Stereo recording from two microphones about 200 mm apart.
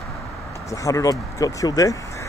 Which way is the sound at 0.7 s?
15° left (ahead or behind).